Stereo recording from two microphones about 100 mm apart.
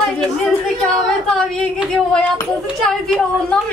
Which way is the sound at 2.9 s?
5° left (ahead or behind).